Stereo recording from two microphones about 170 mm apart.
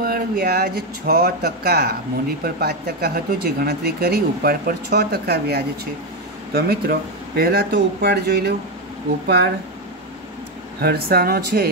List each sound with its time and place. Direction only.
0.0 s speech: 60° right (ahead or behind)
10.8 s speech: 65° right (ahead or behind)